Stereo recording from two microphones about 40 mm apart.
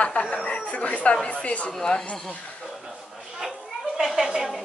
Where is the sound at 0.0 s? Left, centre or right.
Left.